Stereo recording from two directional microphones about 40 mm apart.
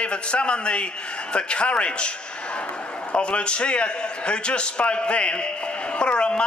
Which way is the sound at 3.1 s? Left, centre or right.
Left.